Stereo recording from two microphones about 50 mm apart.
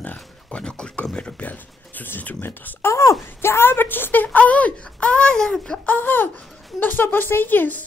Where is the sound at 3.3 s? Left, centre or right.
Left; by 5.8 s centre.